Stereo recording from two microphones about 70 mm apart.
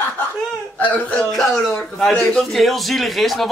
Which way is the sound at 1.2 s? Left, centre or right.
Centre.